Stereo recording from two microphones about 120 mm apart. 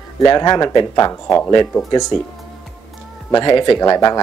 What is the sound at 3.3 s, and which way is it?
Speech, 45° left (ahead or behind).